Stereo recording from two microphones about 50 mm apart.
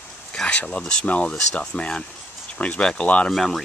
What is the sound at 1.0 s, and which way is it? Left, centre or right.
Speech, left.